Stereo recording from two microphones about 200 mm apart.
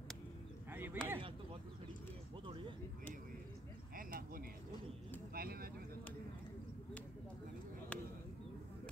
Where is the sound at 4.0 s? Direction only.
45° right (ahead or behind).